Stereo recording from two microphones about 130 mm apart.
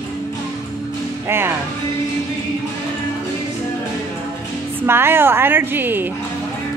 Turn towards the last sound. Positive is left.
turn(degrees=-15)  # may be behind; listen again after turning